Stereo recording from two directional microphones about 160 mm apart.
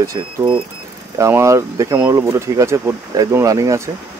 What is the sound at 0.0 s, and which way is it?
Speech, 20° right (ahead or behind).